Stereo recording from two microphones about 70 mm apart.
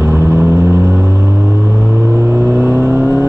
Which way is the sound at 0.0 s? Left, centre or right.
Right.